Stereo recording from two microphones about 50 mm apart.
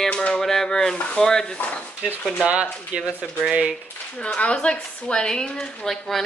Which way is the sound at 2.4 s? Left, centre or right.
Right.